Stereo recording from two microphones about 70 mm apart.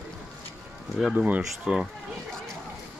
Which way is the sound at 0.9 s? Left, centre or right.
Centre.